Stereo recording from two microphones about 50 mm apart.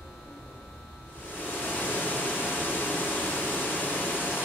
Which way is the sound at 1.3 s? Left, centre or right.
Left.